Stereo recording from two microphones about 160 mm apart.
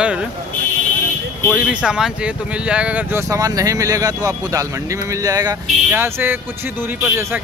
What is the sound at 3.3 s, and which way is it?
Speech, 20° right (ahead or behind).